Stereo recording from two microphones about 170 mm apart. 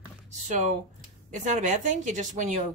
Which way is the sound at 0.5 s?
45° right (ahead or behind).